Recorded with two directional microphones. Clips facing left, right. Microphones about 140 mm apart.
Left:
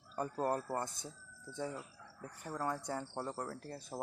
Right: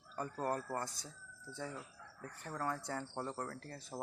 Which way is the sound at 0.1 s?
20° left (ahead or behind).